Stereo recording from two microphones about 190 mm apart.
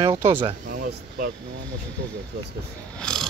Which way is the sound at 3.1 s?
5° left (ahead or behind).